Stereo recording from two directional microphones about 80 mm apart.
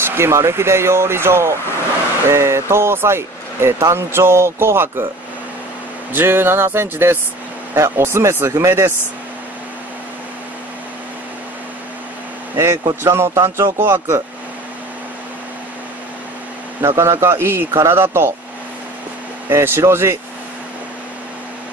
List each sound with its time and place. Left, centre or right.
0.0 s speech: right
6.1 s speech: right
13.0 s speech: right
16.8 s speech: right
19.5 s speech: right